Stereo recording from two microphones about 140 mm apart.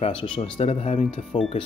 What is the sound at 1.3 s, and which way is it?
Speech, 55° left (ahead or behind).